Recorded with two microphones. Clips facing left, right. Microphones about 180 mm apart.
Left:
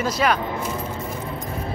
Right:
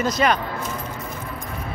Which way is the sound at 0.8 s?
25° left (ahead or behind).